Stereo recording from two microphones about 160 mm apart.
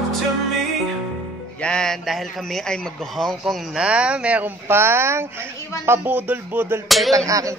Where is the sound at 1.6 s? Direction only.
5° left (ahead or behind).